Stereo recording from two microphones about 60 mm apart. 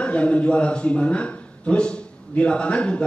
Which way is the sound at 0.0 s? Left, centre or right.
Centre.